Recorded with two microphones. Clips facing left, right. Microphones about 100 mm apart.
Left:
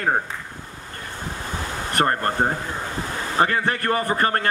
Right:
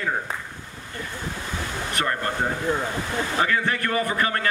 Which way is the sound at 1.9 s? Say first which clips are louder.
Left 6 dB; 45° left (ahead or behind).